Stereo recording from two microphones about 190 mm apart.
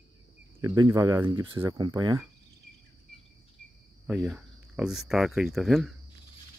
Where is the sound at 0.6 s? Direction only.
20° right (ahead or behind).